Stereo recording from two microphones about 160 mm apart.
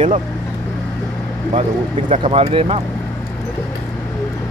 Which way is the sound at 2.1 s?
40° right (ahead or behind).